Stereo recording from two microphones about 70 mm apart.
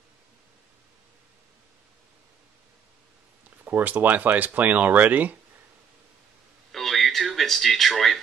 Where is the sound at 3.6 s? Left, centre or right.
Right.